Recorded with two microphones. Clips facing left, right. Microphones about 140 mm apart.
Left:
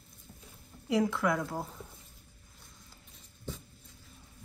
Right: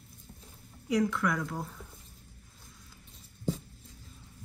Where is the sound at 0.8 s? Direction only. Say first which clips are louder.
Even; 5° left (ahead or behind).